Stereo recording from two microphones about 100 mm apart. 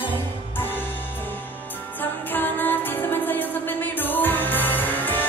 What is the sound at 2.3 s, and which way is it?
Music, 20° left (ahead or behind).